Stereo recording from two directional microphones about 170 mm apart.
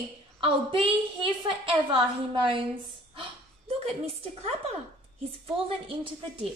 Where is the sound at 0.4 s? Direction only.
30° right (ahead or behind).